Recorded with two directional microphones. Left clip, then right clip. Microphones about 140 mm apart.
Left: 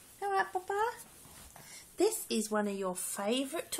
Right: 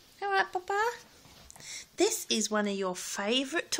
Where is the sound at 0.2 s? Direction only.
25° right (ahead or behind).